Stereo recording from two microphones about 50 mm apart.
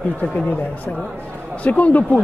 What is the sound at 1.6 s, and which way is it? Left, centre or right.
Speech, left.